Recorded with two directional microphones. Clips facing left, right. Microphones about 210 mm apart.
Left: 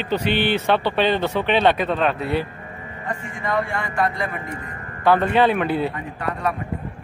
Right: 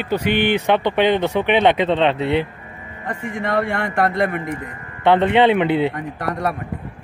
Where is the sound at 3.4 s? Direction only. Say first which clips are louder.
Right 3 dB; 65° right (ahead or behind).